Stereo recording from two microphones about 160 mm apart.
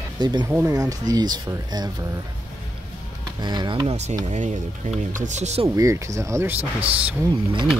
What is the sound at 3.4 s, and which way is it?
Speech, 30° right (ahead or behind).